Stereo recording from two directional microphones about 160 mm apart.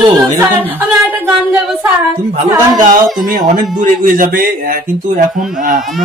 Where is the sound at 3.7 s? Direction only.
60° right (ahead or behind).